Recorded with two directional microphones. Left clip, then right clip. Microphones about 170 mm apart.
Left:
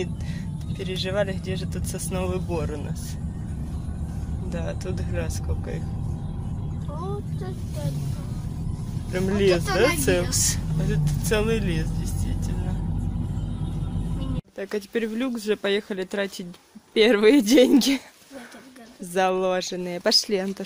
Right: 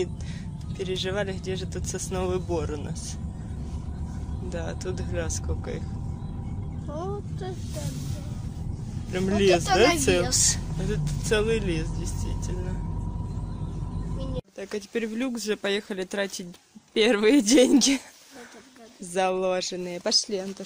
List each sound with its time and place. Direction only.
0.7 s speech: 10° right (ahead or behind)
4.5 s speech: 10° right (ahead or behind)
9.1 s speech: 15° right (ahead or behind)
14.6 s speech: centre (ahead or behind)
19.1 s speech: centre (ahead or behind)
20.1 s speech: 15° left (ahead or behind)